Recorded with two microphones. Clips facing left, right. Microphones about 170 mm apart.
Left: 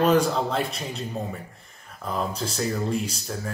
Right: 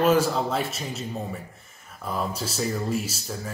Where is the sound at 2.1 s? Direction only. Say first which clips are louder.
Left 1 dB; 5° right (ahead or behind).